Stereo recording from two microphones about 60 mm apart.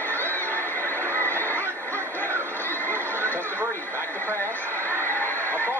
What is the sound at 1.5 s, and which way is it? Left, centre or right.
Music, right.